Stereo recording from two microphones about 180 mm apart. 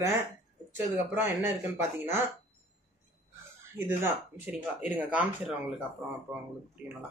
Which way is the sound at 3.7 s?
15° right (ahead or behind).